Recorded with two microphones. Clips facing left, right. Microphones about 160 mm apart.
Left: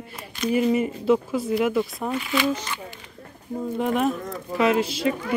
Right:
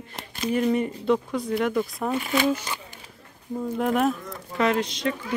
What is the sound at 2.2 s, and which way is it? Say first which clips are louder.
Speech: even; 40° right (ahead or behind).